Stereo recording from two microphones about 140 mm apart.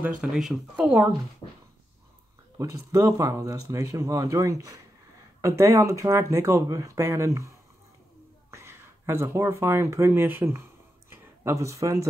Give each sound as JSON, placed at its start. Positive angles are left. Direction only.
{"t": 0.2, "sound": "speech", "side_deg": -5}
{"t": 1.4, "sound": "a sound", "side_deg": 35}
{"t": 2.6, "sound": "speech", "side_deg": -25}